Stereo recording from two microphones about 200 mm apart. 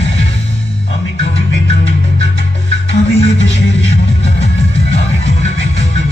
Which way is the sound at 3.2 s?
30° left (ahead or behind).